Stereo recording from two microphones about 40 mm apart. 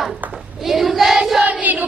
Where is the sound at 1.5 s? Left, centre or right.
Right.